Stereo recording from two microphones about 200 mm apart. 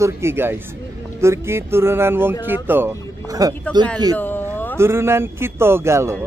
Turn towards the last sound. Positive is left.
turn(degrees=-15)  # may be behind; listen again after turning